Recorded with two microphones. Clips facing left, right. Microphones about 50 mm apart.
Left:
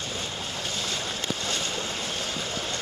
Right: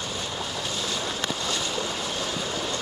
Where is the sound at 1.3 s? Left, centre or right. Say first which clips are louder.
Right 1 dB; left.